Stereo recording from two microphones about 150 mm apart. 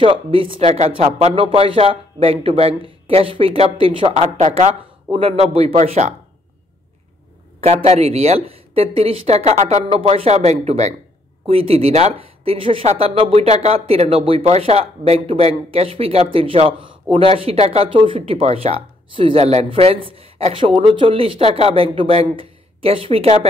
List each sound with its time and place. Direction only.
0.0 s speech: 35° right (ahead or behind)
5.8 s speech: 50° right (ahead or behind)
7.6 s speech: 45° right (ahead or behind)